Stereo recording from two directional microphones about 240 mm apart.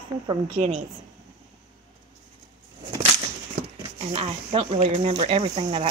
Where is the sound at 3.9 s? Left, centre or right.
Right.